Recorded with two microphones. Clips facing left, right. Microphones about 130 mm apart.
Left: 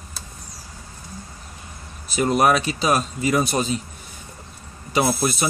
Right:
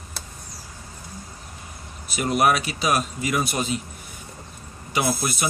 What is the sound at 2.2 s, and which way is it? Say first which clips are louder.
Speech: left 3 dB; 35° left (ahead or behind).